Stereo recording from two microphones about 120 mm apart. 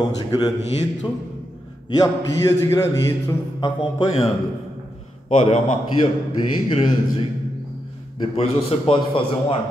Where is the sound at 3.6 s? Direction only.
45° left (ahead or behind).